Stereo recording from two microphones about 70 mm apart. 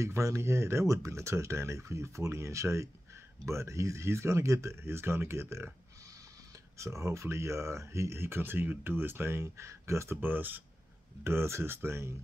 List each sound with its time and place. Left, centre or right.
0.0 s speech: right
6.0 s speech: right
10.2 s speech: right